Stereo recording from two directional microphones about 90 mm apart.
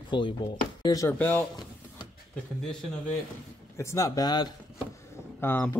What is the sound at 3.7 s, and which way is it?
Speech, 35° left (ahead or behind).